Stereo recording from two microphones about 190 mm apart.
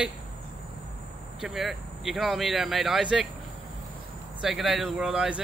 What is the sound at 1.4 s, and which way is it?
Speech, centre (ahead or behind).